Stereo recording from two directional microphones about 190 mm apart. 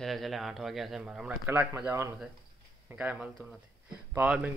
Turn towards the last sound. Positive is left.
turn(degrees=-5)  # may be behind; listen again after turning